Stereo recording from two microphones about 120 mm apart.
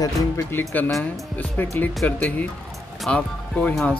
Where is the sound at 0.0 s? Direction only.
20° left (ahead or behind).